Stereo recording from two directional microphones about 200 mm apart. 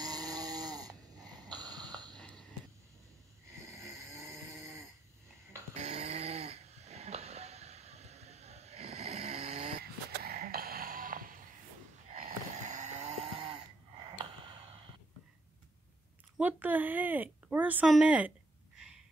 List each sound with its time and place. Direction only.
0.0 s snoring: 20° right (ahead or behind)
2.1 s whispering: 5° left (ahead or behind)
5.8 s snoring: 35° right (ahead or behind)
9.8 s music: 50° right (ahead or behind)
12.1 s snoring: 40° right (ahead or behind)
14.1 s gasp: 25° right (ahead or behind)
16.3 s a sound: 10° right (ahead or behind)